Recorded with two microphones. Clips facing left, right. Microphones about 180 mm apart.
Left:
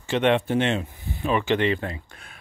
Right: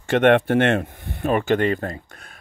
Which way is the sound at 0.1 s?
55° right (ahead or behind).